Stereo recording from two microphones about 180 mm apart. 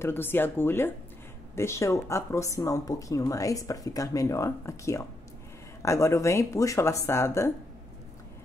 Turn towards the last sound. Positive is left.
turn(degrees=15)  # may be behind; listen again after turning